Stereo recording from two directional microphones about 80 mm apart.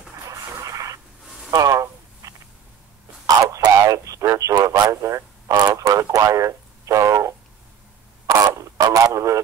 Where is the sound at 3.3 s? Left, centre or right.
Right.